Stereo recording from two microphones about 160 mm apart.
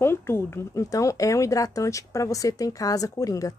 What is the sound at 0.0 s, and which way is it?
Speech, 15° left (ahead or behind).